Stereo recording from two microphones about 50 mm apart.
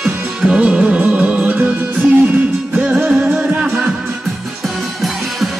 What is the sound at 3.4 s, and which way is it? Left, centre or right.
Music, centre.